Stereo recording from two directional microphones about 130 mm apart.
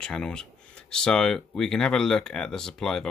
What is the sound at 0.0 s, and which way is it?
Speech, 5° left (ahead or behind).